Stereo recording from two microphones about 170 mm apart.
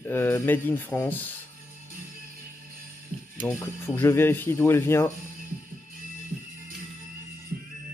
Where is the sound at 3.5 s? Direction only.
15° left (ahead or behind).